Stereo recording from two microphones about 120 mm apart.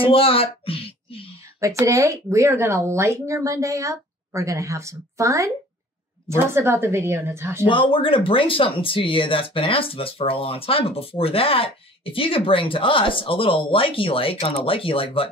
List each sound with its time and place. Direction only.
0.0 s a woman's voice: 50° left (ahead or behind)
1.6 s speech: 25° right (ahead or behind)
7.6 s speech: 45° left (ahead or behind)